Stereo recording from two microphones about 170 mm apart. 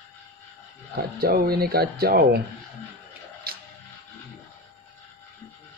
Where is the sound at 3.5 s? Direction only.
60° right (ahead or behind).